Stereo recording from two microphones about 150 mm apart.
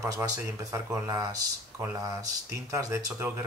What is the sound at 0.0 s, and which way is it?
Speech, 20° right (ahead or behind).